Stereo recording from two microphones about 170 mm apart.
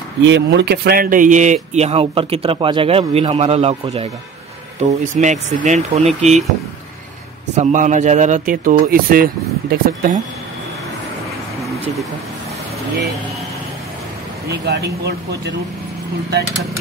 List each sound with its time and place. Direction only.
0.3 s speech: 70° right (ahead or behind); by 4.1 s 35° right (ahead or behind)
4.8 s speech: 45° right (ahead or behind)
7.5 s speech: 45° right (ahead or behind)
14.5 s speech: 75° right (ahead or behind)